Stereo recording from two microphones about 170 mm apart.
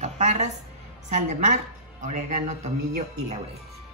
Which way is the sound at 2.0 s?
45° right (ahead or behind).